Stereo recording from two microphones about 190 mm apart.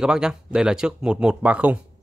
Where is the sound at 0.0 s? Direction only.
5° right (ahead or behind).